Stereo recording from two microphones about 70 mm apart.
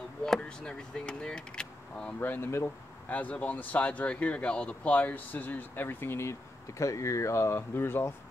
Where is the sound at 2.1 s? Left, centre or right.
Left.